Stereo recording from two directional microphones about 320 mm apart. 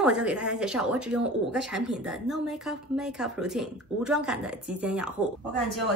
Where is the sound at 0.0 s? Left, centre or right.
Centre.